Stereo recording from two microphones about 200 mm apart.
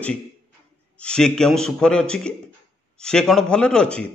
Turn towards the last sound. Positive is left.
turn(degrees=5)  # may be behind; listen again after turning